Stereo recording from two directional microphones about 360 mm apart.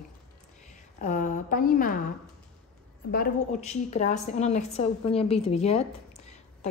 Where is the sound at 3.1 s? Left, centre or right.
Left.